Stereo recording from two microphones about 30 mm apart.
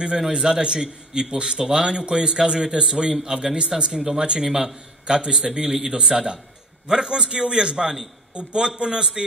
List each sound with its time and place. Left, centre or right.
0.3 s a man's voice: right